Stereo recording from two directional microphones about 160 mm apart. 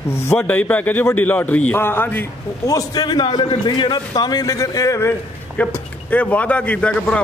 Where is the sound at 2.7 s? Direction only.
25° left (ahead or behind).